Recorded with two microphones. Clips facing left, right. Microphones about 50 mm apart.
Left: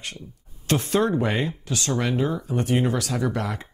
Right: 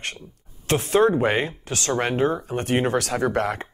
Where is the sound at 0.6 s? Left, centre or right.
Right.